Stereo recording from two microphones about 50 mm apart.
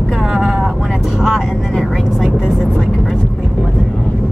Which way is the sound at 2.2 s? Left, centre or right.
Centre.